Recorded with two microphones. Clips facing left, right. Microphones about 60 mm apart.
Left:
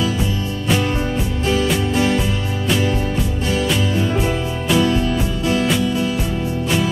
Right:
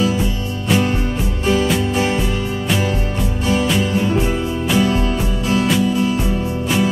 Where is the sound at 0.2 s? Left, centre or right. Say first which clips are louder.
Even; right.